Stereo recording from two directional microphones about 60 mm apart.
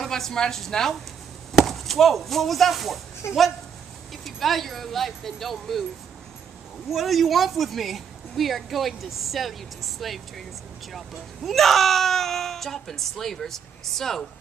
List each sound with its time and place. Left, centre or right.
0.0 s a woman's voice: centre
3.2 s speech: left
4.1 s speech: centre
6.9 s speech: centre